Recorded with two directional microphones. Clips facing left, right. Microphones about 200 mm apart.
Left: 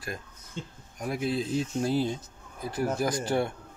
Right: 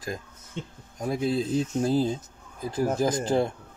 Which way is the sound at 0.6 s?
60° right (ahead or behind).